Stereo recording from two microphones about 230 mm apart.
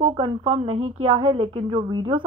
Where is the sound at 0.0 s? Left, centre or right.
Right.